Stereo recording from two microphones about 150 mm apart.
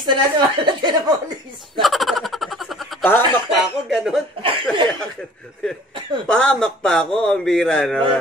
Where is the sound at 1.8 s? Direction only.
Centre (ahead or behind).